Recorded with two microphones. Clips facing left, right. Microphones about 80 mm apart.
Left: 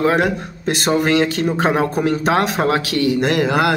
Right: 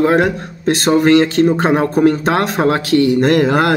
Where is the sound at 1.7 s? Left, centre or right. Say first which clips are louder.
Right 3 dB; centre.